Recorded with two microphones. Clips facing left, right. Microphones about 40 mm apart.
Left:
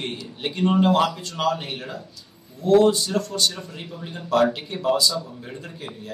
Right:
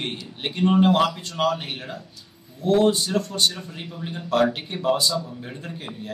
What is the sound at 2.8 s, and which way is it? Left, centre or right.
Speech, centre.